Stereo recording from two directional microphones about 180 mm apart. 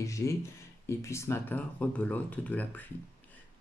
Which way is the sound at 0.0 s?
15° left (ahead or behind).